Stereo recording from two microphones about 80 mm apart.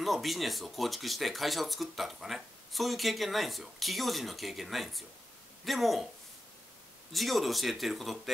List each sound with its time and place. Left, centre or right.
0.0 s speech: centre
7.1 s speech: centre